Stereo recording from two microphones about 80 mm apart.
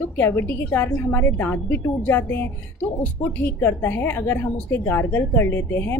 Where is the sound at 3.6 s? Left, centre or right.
Left.